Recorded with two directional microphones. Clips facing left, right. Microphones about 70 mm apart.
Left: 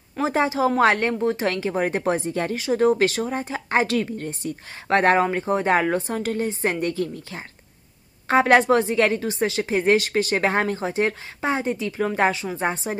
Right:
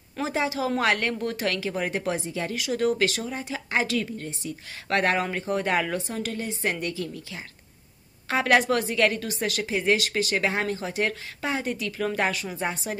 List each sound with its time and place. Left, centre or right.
0.2 s a woman's voice: left
4.8 s a woman's voice: left